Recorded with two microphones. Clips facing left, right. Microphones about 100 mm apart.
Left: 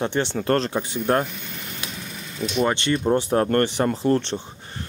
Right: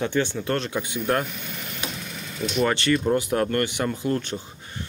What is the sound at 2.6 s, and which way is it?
Speech, 20° left (ahead or behind).